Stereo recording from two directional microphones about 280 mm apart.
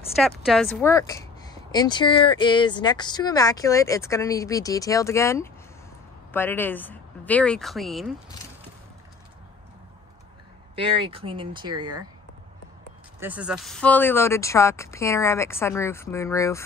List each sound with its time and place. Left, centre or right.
0.2 s speech: centre
10.8 s speech: centre
13.2 s speech: centre